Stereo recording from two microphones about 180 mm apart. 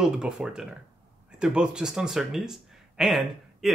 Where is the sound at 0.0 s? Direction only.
5° right (ahead or behind).